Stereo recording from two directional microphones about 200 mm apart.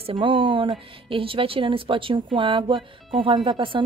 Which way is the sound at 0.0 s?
25° right (ahead or behind).